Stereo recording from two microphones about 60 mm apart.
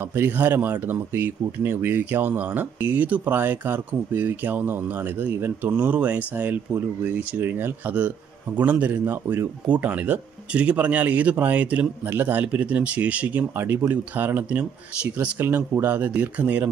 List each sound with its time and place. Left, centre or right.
0.0 s speech: right
12.1 s speech: right
12.4 s speech: right
13.6 s speech: right
15.3 s speech: right